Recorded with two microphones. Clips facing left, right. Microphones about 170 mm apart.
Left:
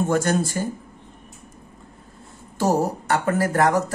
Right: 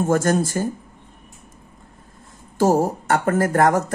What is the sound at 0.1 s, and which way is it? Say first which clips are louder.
Speech: right 2 dB; 45° right (ahead or behind).